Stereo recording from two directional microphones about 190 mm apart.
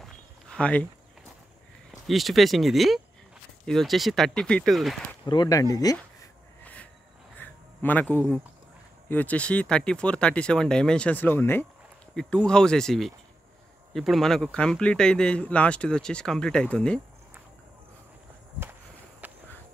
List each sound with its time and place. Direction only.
0.0 s a sound: 5° left (ahead or behind)
1.9 s speech: centre (ahead or behind)
5.2 s speech: 20° left (ahead or behind)
6.6 s a sound: 10° left (ahead or behind)
9.1 s speech: 10° left (ahead or behind)
19.2 s walk: 10° right (ahead or behind)